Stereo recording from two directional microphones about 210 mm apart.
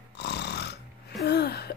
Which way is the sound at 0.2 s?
55° left (ahead or behind).